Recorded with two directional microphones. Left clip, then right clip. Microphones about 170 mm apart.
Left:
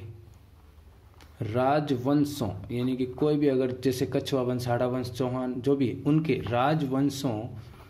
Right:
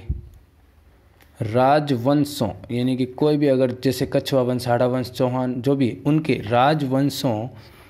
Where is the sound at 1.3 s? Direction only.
30° right (ahead or behind).